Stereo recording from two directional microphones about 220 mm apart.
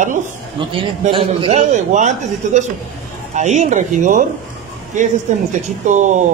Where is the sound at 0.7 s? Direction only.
20° right (ahead or behind).